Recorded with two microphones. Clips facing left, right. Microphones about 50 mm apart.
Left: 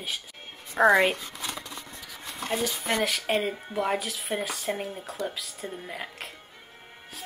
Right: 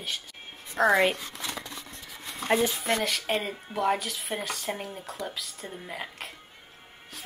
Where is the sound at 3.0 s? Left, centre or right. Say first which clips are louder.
Left 2 dB; centre.